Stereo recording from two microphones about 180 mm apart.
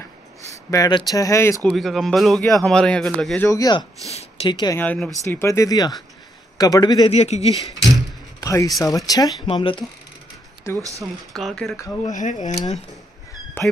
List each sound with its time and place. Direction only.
0.5 s speech: 20° left (ahead or behind)
1.7 s a man's voice: centre (ahead or behind)
3.4 s speech: 20° left (ahead or behind)
4.1 s a woman's voice: 35° left (ahead or behind)
4.7 s speech: 10° left (ahead or behind); by 7.5 s 35° left (ahead or behind)
7.6 s speech: centre (ahead or behind)
8.4 s speech: 20° left (ahead or behind)
10.8 s speech: 15° right (ahead or behind)
11.3 s a man's voice: centre (ahead or behind)
12.1 s speech: 45° left (ahead or behind)
13.6 s speech: 10° left (ahead or behind)